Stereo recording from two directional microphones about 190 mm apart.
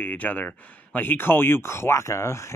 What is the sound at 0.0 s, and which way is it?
Speech, 10° left (ahead or behind).